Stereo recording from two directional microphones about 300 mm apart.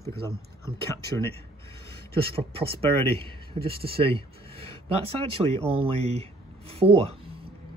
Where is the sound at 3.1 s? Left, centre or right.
Centre.